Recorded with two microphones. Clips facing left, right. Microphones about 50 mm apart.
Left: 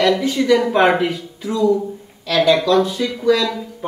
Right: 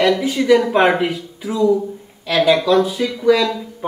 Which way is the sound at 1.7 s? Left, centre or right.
Centre.